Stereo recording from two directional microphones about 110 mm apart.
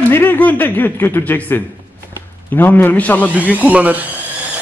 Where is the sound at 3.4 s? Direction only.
15° right (ahead or behind).